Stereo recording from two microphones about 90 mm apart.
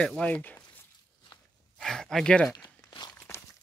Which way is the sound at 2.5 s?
55° left (ahead or behind).